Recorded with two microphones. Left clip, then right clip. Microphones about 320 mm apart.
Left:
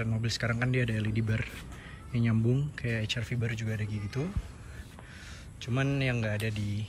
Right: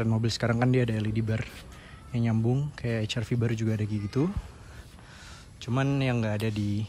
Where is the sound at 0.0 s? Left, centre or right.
Centre.